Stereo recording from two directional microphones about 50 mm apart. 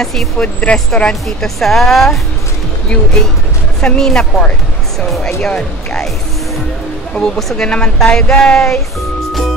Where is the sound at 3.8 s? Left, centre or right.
Centre.